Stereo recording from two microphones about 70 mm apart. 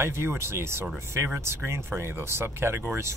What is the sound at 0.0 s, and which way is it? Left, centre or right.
Speech, right.